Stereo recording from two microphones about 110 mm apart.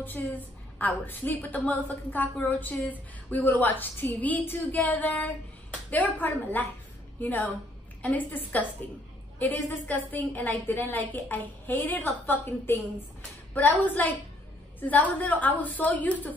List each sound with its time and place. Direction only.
0.0 s a woman's voice: 15° left (ahead or behind)